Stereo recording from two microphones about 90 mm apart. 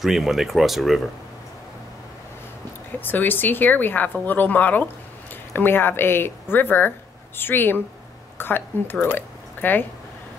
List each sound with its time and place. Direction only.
0.0 s speech: 5° right (ahead or behind)
3.0 s speech: 20° left (ahead or behind)